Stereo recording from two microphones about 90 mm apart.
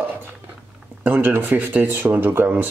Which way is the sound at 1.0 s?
20° right (ahead or behind).